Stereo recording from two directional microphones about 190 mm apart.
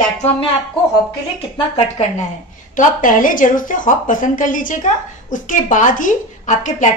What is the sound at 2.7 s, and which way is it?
A woman's voice, 45° left (ahead or behind).